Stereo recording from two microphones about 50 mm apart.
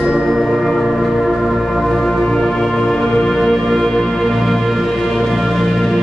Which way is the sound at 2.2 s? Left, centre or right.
Centre.